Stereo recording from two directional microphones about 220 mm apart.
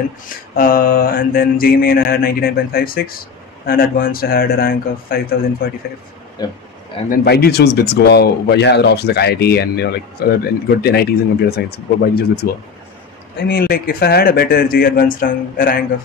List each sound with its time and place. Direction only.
0.6 s mantra: 40° left (ahead or behind)
5.6 s speech: 40° left (ahead or behind)
6.4 s speech: 20° left (ahead or behind)
7.1 s speech: 45° left (ahead or behind)